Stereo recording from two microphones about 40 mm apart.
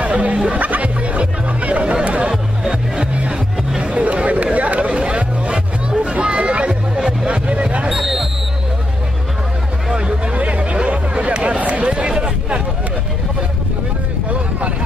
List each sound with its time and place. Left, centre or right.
0.0 s music: right
3.8 s chatter: right
6.2 s hubbub: right
7.0 s music: right
7.9 s basketball bounce: centre
9.9 s music: right
10.3 s a sound: right